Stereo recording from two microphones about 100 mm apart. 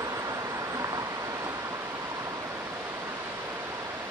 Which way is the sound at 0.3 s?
35° right (ahead or behind).